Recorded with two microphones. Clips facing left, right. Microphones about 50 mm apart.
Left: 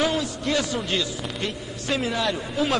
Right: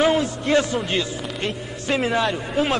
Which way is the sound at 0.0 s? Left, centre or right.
Right.